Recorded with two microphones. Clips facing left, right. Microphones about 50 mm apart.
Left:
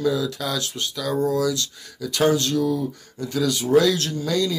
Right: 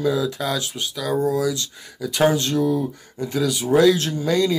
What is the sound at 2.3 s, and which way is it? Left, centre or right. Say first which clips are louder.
Speech: right 1 dB; right.